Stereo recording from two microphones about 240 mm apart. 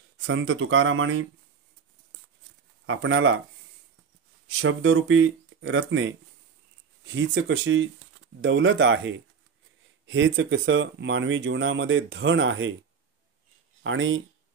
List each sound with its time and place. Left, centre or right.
0.2 s speech: right
2.9 s speech: right
4.5 s speech: right
7.2 s speech: right
13.8 s speech: right